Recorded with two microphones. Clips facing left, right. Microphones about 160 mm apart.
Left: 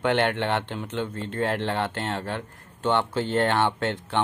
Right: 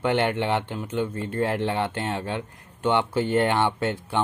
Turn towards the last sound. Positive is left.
turn(degrees=-10)  # may be behind; listen again after turning